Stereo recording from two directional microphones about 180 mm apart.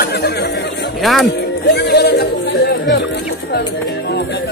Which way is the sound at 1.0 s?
Centre (ahead or behind).